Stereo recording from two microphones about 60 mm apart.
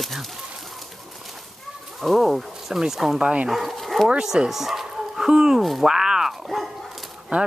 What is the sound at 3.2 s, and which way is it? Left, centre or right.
Speech, centre.